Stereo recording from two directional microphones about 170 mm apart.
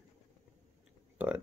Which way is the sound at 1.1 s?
10° right (ahead or behind).